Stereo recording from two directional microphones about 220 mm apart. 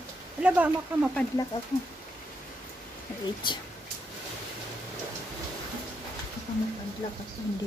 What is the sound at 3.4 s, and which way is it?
Speech, 20° left (ahead or behind).